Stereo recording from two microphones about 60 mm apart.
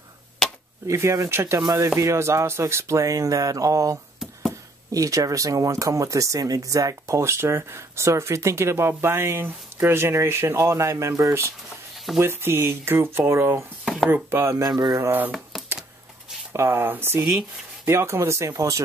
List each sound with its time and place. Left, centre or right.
0.8 s speech: right
12.2 s speech: right
13.8 s chopping: centre
14.3 s speech: right
14.6 s speech: right
15.0 s speech: right
16.5 s speech: right
18.5 s speech: right